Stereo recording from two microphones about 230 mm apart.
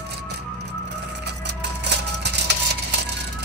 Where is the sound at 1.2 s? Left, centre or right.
Right.